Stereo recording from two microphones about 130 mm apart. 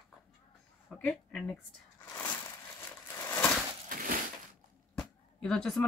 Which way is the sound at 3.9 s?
90° right.